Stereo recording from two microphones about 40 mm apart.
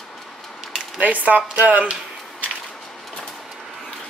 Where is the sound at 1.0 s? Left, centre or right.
Right.